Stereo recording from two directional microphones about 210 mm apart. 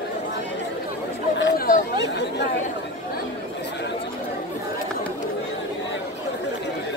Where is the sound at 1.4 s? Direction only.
45° left (ahead or behind).